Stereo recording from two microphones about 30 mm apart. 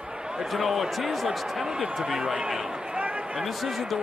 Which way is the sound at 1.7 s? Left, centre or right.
Right.